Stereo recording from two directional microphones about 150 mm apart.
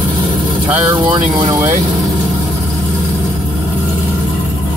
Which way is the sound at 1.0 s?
35° right (ahead or behind).